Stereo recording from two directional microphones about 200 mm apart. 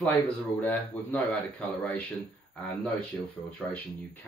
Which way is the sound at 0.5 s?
10° left (ahead or behind).